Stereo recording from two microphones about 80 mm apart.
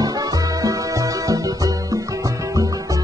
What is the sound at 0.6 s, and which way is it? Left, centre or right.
Music, right.